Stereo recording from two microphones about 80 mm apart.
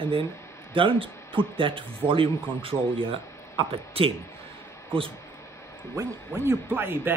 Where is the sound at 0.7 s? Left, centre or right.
Right.